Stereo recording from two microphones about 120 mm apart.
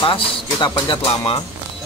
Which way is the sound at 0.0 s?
45° left (ahead or behind).